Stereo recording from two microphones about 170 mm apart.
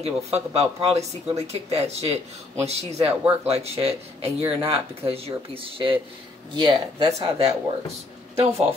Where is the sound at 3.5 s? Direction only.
35° right (ahead or behind).